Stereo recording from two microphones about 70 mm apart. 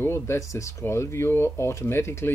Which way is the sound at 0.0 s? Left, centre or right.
Left.